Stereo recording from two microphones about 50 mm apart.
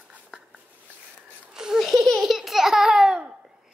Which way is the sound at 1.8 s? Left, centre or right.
Centre.